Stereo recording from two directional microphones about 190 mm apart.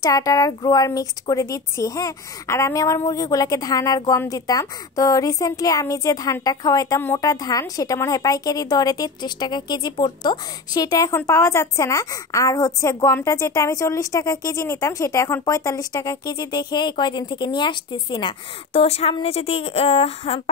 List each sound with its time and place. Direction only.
0.0 s a woman's voice: 20° left (ahead or behind)